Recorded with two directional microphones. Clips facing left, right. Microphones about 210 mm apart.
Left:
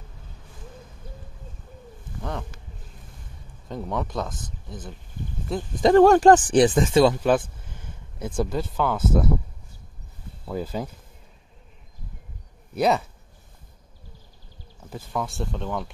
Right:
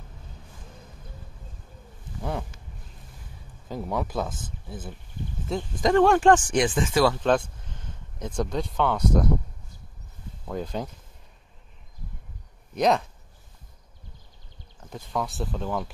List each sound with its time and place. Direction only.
3.6 s speech: 5° right (ahead or behind)
5.8 s speech: 35° left (ahead or behind)
7.3 s speech: 5° left (ahead or behind)
10.4 s speech: 5° left (ahead or behind)
12.7 s speech: 5° left (ahead or behind)
14.8 s speech: 5° left (ahead or behind)